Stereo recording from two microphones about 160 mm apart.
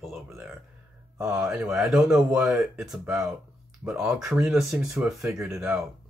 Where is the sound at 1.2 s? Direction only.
5° right (ahead or behind).